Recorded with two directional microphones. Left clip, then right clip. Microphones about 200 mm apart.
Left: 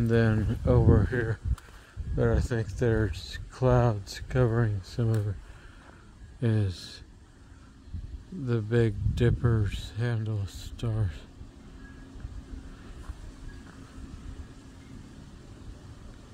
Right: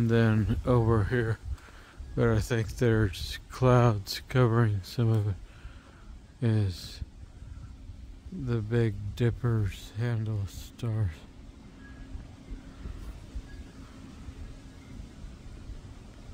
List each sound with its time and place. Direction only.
0.0 s speech: 15° right (ahead or behind)
6.4 s speech: 5° right (ahead or behind)
8.5 s speech: centre (ahead or behind)